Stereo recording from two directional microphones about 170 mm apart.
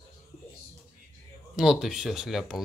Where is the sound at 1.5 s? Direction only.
5° right (ahead or behind).